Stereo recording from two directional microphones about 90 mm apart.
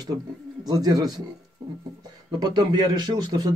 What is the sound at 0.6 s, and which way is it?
Speech, 45° right (ahead or behind).